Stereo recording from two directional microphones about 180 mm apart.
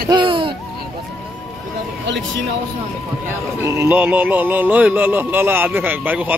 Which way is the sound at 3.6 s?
15° right (ahead or behind).